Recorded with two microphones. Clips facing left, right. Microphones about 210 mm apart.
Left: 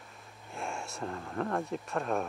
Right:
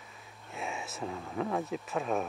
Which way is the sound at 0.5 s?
Centre (ahead or behind).